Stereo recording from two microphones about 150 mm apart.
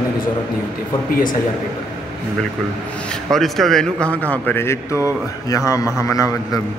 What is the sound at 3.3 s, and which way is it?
A man's voice, centre (ahead or behind).